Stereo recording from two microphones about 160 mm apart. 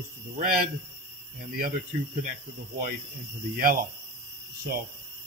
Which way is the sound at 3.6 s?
65° right (ahead or behind).